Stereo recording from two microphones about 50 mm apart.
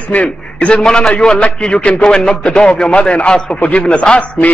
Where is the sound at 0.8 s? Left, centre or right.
Centre.